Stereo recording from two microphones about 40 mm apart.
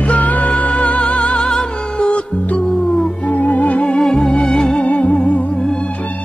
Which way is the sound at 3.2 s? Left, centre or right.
Left.